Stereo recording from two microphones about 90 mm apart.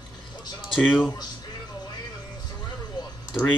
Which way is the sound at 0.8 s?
20° left (ahead or behind).